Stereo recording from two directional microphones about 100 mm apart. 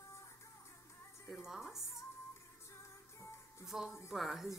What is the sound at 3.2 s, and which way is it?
Music, 30° left (ahead or behind).